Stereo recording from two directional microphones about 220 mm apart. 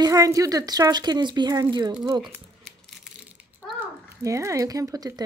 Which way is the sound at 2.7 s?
Centre (ahead or behind).